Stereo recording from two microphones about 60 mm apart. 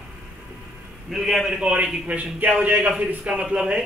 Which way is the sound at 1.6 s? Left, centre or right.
Centre.